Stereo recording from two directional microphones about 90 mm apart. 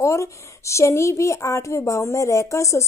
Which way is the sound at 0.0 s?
35° left (ahead or behind).